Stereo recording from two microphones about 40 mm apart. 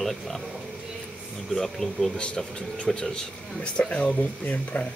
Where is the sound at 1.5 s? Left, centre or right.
Centre.